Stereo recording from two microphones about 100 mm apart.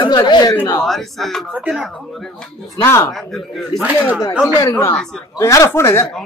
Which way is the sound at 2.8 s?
25° left (ahead or behind).